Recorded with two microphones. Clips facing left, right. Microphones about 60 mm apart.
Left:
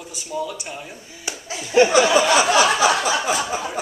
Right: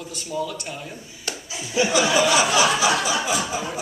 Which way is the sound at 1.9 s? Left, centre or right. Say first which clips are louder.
Left 3 dB; left.